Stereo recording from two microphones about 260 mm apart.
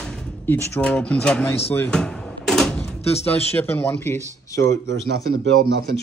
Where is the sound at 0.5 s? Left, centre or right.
Centre.